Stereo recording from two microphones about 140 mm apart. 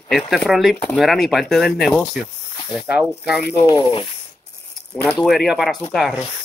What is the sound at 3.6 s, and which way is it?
Speech, 35° left (ahead or behind).